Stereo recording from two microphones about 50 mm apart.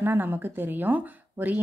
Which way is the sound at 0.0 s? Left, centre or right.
Right.